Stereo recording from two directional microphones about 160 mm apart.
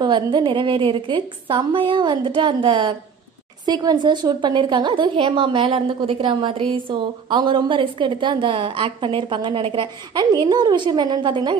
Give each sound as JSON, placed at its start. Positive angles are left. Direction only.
{"t": 0.0, "sound": "a woman's voice", "side_deg": -30}